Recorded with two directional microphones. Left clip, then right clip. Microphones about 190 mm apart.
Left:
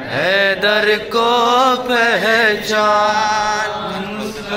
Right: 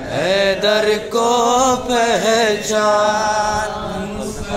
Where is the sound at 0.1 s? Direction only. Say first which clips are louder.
Left 1 dB; 10° right (ahead or behind).